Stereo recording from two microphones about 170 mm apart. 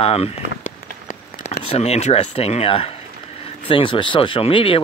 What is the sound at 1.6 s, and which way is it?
Speech, 35° left (ahead or behind).